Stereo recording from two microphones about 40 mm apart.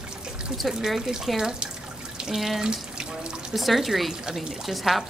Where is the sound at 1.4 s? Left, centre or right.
Centre.